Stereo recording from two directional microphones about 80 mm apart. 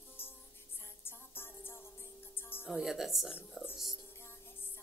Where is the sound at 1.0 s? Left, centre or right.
Left.